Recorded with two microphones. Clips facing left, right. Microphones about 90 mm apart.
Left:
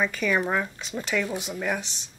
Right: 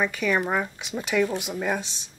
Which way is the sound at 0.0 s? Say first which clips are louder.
Right 1 dB; 5° right (ahead or behind).